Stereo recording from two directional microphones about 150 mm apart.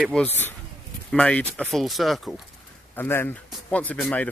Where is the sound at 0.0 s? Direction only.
5° left (ahead or behind).